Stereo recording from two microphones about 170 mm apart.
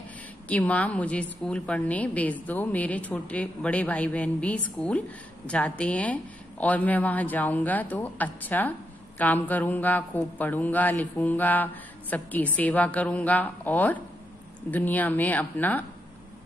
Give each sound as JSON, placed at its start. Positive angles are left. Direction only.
{"t": 0.5, "sound": "a man's voice", "side_deg": 10}